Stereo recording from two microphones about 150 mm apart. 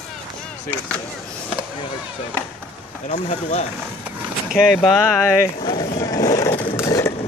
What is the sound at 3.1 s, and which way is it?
Speech, 50° left (ahead or behind).